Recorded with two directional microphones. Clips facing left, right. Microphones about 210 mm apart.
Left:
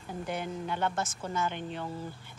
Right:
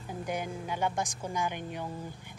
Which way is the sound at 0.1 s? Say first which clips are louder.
Even; 10° right (ahead or behind).